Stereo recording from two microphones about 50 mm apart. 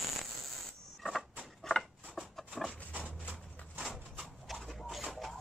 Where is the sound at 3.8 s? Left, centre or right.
Centre.